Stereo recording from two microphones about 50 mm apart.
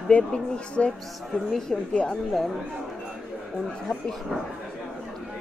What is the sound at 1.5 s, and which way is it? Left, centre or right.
Speech, centre.